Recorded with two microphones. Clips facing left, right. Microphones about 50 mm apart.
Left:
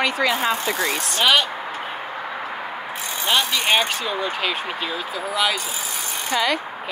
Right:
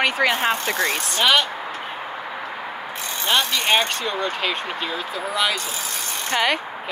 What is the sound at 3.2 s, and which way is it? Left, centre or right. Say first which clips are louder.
Speech: even; centre.